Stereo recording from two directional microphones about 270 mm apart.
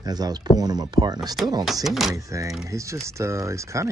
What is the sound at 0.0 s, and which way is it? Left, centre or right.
Speech, centre.